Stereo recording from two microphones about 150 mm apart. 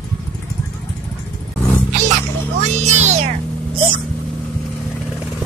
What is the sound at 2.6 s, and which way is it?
Music, 50° right (ahead or behind).